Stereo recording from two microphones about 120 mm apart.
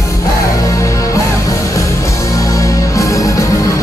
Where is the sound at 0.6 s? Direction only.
25° left (ahead or behind).